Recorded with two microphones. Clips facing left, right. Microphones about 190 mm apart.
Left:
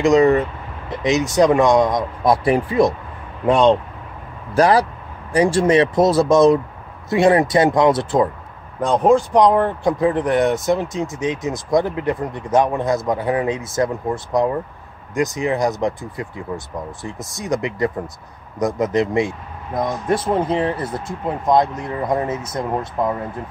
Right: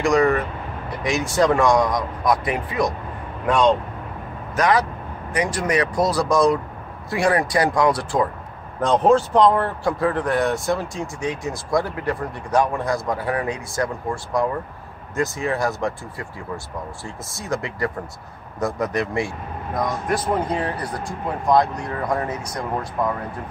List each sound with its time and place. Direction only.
0.0 s speech: 20° left (ahead or behind)
8.8 s speech: 10° left (ahead or behind)